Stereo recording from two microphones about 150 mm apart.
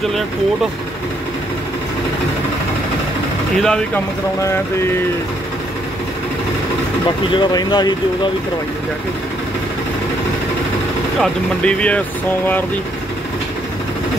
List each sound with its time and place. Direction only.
3.6 s speech: 5° left (ahead or behind)
7.3 s speech: 30° left (ahead or behind)
11.1 s speech: 5° left (ahead or behind)